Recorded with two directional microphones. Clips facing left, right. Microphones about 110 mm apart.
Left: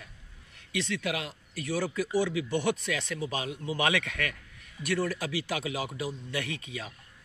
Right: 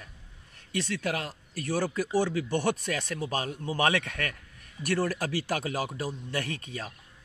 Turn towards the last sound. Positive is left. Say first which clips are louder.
# right 1 dB
turn(degrees=-45)  # may be behind; listen again after turning